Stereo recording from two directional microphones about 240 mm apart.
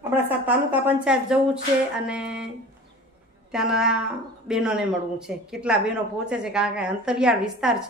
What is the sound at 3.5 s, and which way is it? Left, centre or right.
Speech, centre.